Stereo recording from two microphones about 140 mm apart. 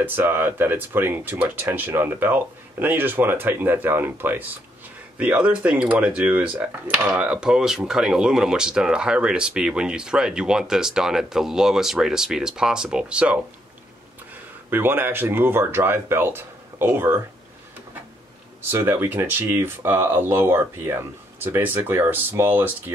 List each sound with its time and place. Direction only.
0.0 s speech: 15° right (ahead or behind)
14.7 s speech: 15° right (ahead or behind)
18.7 s speech: 15° right (ahead or behind)